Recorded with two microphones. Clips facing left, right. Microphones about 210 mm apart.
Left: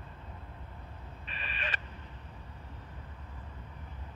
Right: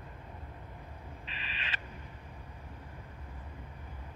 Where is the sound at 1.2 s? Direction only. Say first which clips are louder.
Left 6 dB; 50° left (ahead or behind).